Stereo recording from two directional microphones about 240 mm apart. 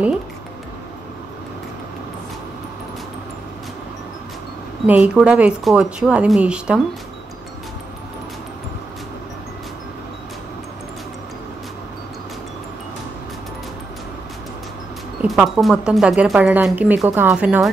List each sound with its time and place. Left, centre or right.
4.8 s speech: centre
15.2 s speech: centre